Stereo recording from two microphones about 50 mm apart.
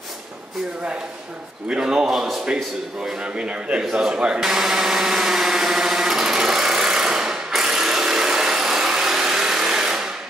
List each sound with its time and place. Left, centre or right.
1.7 s speech: centre
2.0 s speech: centre
3.3 s a man's voice: right
4.4 s a sound: centre